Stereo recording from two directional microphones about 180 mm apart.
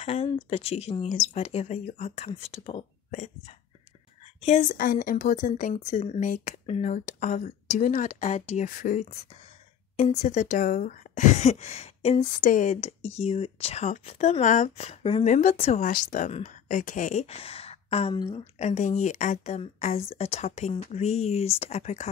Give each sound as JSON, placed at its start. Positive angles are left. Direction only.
{"t": 0.0, "sound": "a woman's voice", "side_deg": 35}
{"t": 4.4, "sound": "a woman's voice", "side_deg": 40}
{"t": 12.4, "sound": "a woman's voice", "side_deg": 45}
{"t": 15.9, "sound": "a woman's voice", "side_deg": 50}
{"t": 18.4, "sound": "a woman's voice", "side_deg": 40}